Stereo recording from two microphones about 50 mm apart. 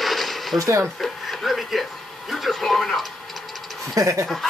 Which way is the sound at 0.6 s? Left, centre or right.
Right.